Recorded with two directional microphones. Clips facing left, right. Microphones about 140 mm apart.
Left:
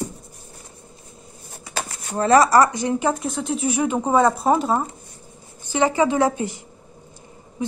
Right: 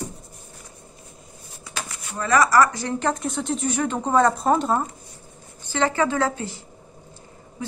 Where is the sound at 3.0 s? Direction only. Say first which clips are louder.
Left 2 dB; centre (ahead or behind).